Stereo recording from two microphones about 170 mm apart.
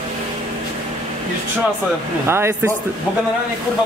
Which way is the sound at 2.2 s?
15° right (ahead or behind).